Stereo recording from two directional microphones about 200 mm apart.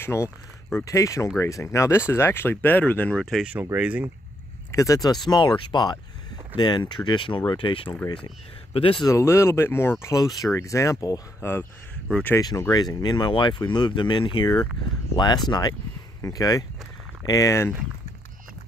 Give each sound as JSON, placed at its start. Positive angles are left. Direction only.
{"t": 0.0, "sound": "speech", "side_deg": 15}
{"t": 4.7, "sound": "speech", "side_deg": 15}
{"t": 12.4, "sound": "speech", "side_deg": 20}